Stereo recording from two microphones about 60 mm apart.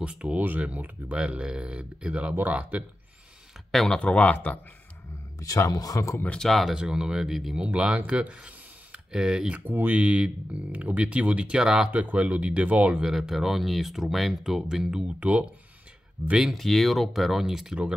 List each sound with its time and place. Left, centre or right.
0.0 s speech: centre
1.1 s speech: centre
3.7 s speech: centre
4.0 s speech: left
5.4 s speech: left
6.3 s speech: centre
6.7 s speech: centre
7.6 s speech: centre
9.7 s speech: right
9.9 s speech: right
11.9 s speech: right
13.0 s speech: centre; by 15.4 s right
16.5 s speech: centre